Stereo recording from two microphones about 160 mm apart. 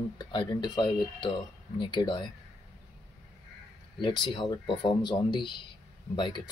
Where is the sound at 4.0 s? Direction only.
30° left (ahead or behind).